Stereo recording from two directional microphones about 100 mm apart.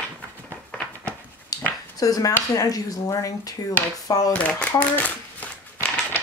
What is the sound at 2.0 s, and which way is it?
Speech, 35° left (ahead or behind).